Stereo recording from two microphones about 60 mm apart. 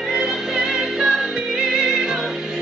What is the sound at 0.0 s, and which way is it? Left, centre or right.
Music, centre.